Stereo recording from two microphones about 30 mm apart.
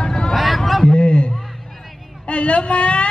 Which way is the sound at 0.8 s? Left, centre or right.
Left.